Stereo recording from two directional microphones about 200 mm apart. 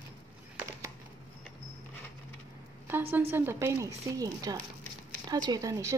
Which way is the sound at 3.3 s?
10° right (ahead or behind).